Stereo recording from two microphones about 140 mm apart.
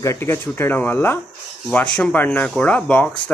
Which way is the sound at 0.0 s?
20° left (ahead or behind).